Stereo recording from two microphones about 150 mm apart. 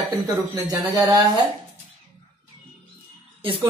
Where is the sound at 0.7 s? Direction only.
25° right (ahead or behind).